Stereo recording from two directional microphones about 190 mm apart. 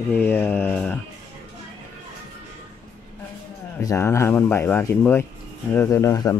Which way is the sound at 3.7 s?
15° left (ahead or behind).